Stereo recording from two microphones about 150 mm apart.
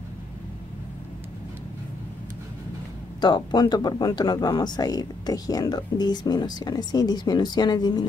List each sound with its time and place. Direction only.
3.2 s speech: 30° left (ahead or behind)